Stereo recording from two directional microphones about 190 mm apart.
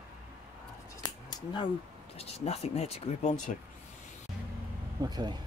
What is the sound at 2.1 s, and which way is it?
Speech, 30° left (ahead or behind).